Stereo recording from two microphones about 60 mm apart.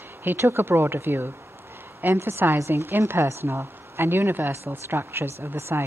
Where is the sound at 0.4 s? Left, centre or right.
Right.